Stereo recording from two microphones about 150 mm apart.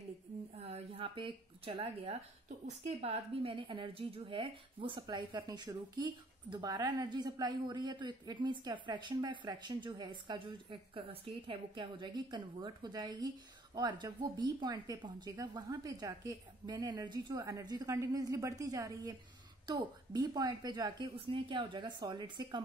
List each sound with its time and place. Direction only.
0.7 s a woman's voice: 40° right (ahead or behind)